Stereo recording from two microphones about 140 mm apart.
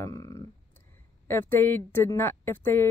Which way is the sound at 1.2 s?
15° left (ahead or behind).